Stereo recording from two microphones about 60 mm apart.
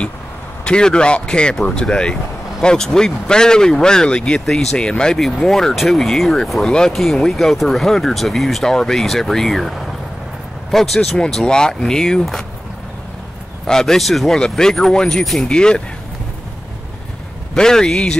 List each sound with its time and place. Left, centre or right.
0.7 s speech: centre
13.7 s speech: centre
17.6 s speech: centre